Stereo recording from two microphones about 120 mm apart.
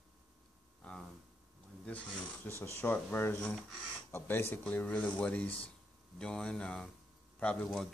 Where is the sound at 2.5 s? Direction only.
15° left (ahead or behind).